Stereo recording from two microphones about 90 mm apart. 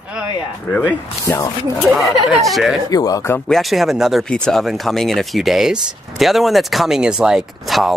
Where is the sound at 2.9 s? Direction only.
45° left (ahead or behind).